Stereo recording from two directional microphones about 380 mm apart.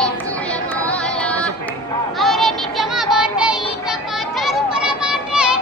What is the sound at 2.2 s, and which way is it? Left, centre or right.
Child singing, centre.